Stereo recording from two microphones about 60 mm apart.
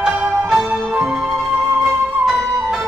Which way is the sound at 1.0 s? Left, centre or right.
Centre.